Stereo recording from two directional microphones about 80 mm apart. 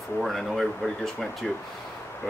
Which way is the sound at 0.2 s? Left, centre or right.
Centre.